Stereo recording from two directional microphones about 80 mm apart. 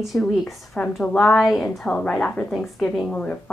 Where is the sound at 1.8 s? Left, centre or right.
Centre.